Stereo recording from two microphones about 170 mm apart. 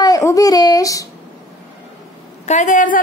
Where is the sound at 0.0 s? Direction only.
20° left (ahead or behind).